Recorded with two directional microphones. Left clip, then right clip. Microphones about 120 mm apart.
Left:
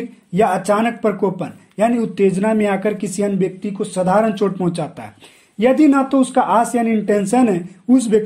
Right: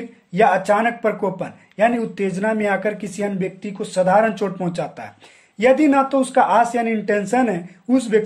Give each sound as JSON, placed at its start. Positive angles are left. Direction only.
{"t": 0.3, "sound": "speech", "side_deg": 40}